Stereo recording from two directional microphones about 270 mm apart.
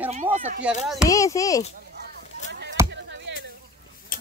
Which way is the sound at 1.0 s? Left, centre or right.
Centre.